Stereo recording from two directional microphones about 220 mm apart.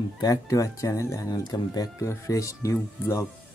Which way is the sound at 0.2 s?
15° left (ahead or behind).